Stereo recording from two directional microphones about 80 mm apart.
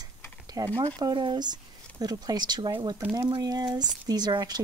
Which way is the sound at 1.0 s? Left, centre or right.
Right.